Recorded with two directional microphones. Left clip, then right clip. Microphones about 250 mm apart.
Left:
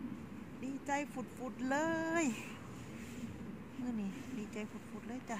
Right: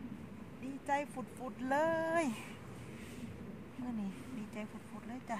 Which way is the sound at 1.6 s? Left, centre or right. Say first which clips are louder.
Right 3 dB; centre.